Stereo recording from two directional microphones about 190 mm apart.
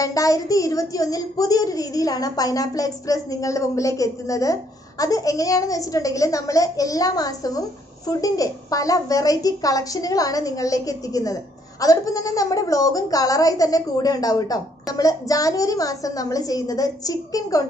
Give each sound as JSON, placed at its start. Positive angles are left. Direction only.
{"t": 0.0, "sound": "speech", "side_deg": 20}